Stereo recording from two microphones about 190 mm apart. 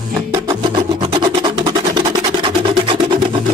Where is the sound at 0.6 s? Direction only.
30° right (ahead or behind).